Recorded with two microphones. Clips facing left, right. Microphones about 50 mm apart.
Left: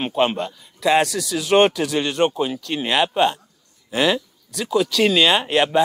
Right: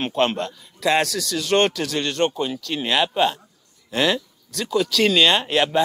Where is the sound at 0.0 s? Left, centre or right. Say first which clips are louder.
Left 1 dB; centre.